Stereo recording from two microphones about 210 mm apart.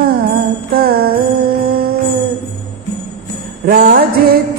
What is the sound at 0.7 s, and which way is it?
Jingle bell, 45° right (ahead or behind).